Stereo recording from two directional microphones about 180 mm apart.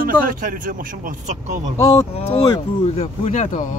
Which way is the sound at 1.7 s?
20° left (ahead or behind).